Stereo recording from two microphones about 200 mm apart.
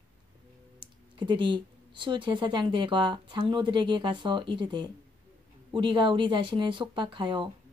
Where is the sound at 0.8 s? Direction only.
25° right (ahead or behind).